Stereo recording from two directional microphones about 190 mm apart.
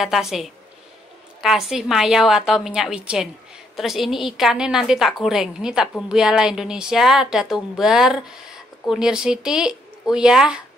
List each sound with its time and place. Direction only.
0.0 s a woman's voice: centre (ahead or behind)